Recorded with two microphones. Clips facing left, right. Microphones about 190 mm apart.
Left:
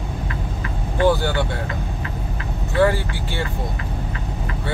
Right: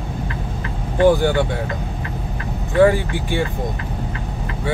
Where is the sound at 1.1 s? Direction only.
15° right (ahead or behind).